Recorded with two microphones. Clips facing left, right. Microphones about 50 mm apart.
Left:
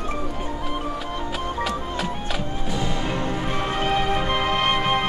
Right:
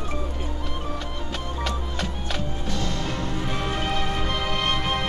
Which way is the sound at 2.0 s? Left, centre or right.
Centre.